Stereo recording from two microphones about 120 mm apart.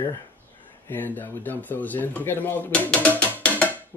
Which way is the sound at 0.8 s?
15° left (ahead or behind).